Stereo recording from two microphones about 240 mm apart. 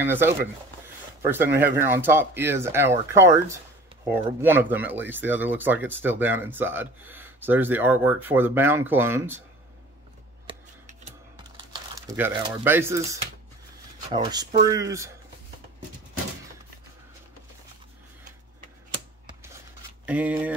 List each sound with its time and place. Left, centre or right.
0.0 s speech: centre
10.4 s typing: right
11.7 s speech: centre
20.1 s speech: centre